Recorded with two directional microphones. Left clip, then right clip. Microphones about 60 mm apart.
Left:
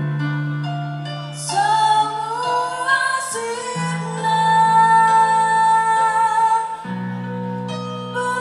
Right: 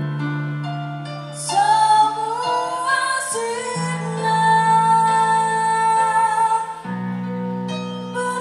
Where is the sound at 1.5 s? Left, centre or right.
Centre.